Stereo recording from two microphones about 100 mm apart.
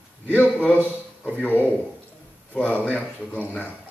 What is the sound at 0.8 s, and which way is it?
Speech, 15° right (ahead or behind).